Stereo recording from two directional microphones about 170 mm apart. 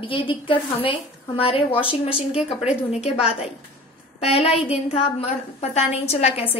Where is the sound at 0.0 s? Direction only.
30° left (ahead or behind).